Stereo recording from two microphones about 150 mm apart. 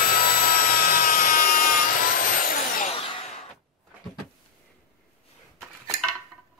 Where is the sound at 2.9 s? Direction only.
40° left (ahead or behind).